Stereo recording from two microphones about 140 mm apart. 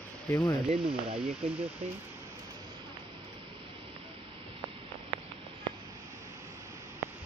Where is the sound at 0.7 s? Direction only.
40° right (ahead or behind).